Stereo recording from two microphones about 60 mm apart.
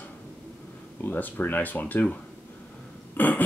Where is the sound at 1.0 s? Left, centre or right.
Left.